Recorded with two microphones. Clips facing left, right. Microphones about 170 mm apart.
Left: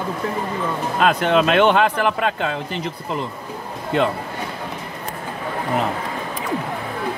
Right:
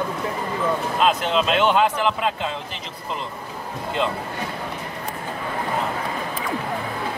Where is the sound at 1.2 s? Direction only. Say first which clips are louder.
Left 5 dB; 60° left (ahead or behind).